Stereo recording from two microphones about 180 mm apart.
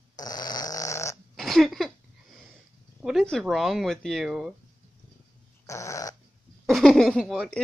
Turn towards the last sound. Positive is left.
turn(degrees=0)  # may be behind; listen again after turning